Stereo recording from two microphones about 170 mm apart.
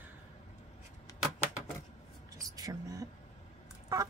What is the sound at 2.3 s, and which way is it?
Music, 20° right (ahead or behind).